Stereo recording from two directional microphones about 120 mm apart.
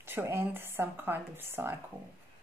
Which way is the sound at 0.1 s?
20° right (ahead or behind).